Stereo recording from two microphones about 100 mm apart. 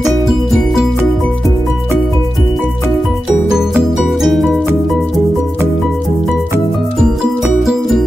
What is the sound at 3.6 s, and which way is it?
Music, 5° right (ahead or behind).